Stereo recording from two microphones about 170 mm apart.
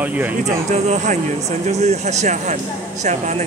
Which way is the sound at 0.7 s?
45° right (ahead or behind).